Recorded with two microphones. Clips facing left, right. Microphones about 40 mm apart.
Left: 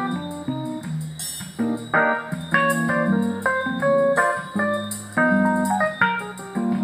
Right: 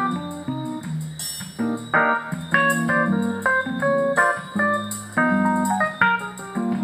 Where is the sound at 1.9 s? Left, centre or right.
Centre.